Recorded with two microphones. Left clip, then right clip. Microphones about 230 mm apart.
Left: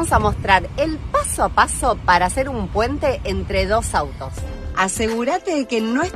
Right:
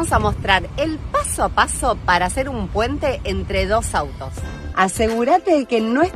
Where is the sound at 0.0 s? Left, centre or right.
Centre.